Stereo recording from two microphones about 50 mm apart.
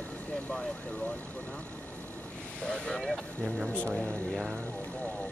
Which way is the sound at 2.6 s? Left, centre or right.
Centre.